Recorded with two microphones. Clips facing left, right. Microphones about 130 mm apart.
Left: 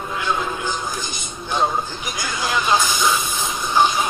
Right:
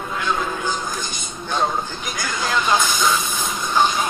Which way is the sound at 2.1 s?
15° left (ahead or behind).